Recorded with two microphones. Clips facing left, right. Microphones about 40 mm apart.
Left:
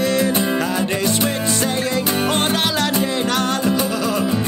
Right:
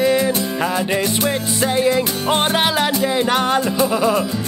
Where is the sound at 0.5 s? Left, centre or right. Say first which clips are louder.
Right 1 dB; centre.